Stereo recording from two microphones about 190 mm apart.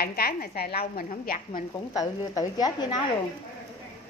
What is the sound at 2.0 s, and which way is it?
Speech, 20° left (ahead or behind).